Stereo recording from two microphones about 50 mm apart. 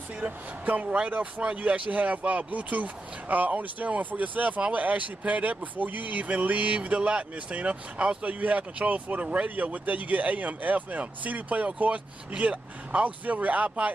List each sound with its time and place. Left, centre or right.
0.7 s speech: right